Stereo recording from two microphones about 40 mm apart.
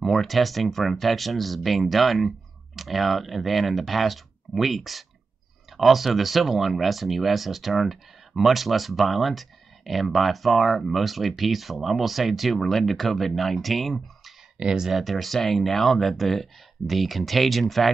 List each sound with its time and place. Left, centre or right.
0.0 s speech: centre
14.6 s speech: right
14.9 s speech: centre